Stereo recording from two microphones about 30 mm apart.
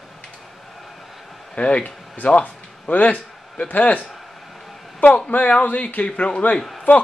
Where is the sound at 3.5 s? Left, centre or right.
Left.